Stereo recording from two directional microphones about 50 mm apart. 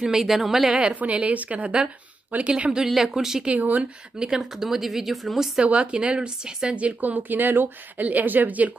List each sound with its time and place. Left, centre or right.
0.0 s a woman's voice: centre
0.9 s a woman's voice: right
2.3 s speech: right
2.8 s a woman's voice: centre
3.4 s speech: right
4.2 s speech: centre
5.6 s speech: right